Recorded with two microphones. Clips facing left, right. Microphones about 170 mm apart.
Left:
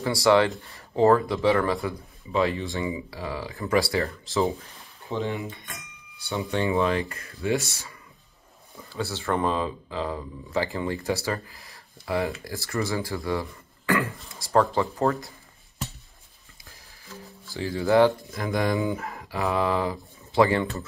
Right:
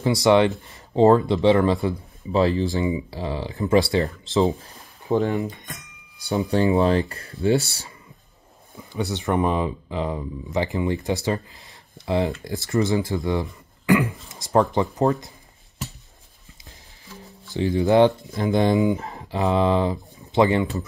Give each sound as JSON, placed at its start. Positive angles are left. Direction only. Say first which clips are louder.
{"t": 0.0, "sound": "speech", "louder": "right 3 dB", "side_deg": -20}
{"t": 5.1, "sound": "speech", "louder": "right 8 dB", "side_deg": -40}
{"t": 6.1, "sound": "a sound", "louder": "right 6 dB", "side_deg": -40}
{"t": 6.5, "sound": "speech", "louder": "right 5 dB", "side_deg": -35}
{"t": 8.7, "sound": "speech", "louder": "right 4 dB", "side_deg": -20}
{"t": 17.5, "sound": "speech", "louder": "right 4 dB", "side_deg": -20}